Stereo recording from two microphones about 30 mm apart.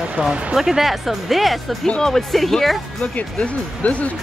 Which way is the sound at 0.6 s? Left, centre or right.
Centre.